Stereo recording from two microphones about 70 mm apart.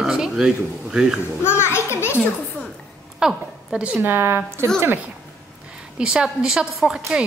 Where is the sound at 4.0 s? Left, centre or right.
Right.